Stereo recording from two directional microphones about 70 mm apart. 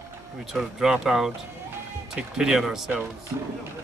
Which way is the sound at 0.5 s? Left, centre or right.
Centre.